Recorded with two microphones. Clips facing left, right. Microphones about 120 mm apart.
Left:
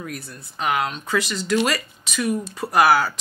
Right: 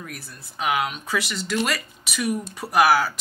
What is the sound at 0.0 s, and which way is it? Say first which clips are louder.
Speech: left 5 dB; 5° right (ahead or behind).